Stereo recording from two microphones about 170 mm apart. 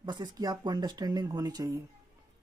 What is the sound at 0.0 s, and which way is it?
Speech, 25° right (ahead or behind).